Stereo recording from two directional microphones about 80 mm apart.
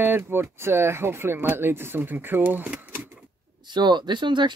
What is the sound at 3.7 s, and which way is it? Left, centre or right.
Speech, right.